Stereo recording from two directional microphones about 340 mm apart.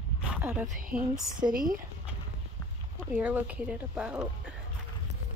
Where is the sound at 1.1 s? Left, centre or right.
Centre.